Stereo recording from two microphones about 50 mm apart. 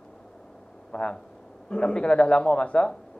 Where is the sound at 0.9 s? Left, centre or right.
Centre.